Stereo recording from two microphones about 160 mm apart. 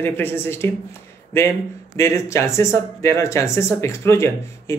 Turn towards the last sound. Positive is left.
turn(degrees=15)  # may be behind; listen again after turning